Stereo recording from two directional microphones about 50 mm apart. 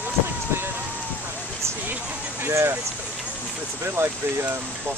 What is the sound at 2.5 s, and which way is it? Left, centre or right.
Speech, right.